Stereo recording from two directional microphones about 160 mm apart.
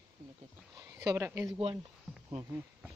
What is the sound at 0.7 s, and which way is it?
Speech, 20° right (ahead or behind).